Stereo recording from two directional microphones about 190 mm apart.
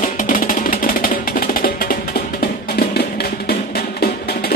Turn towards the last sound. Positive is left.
turn(degrees=55)  # may be behind; listen again after turning